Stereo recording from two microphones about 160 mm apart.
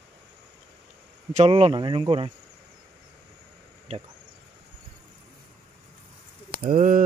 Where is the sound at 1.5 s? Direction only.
35° right (ahead or behind).